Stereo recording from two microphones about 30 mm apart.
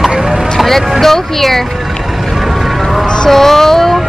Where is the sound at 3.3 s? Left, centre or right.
Centre.